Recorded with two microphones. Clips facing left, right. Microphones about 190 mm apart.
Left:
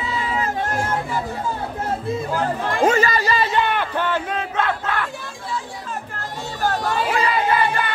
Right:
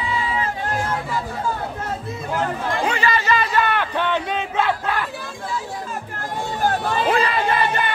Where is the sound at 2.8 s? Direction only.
40° left (ahead or behind).